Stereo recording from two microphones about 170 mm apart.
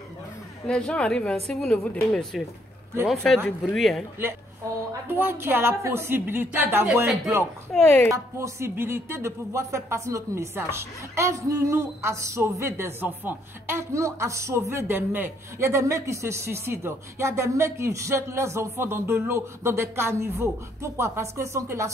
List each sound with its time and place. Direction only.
0.7 s a woman's voice: 5° left (ahead or behind)
4.6 s a woman's voice: 20° right (ahead or behind)
7.7 s a woman's voice: centre (ahead or behind)
8.1 s speech: 15° right (ahead or behind)